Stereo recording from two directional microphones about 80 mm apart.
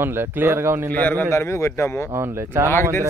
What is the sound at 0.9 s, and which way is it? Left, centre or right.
Speech, left.